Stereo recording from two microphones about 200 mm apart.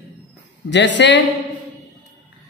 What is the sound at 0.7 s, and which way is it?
Speech, 60° left (ahead or behind).